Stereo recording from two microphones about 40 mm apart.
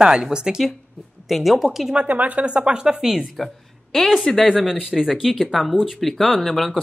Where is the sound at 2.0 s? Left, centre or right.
Right.